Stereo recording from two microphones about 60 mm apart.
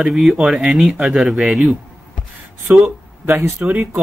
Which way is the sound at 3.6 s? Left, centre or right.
Right.